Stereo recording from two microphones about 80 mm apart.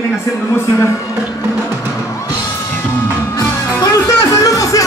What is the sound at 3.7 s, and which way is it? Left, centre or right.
Music, left.